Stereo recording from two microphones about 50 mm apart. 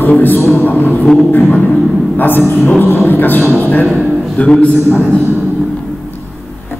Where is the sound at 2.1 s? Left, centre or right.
Left.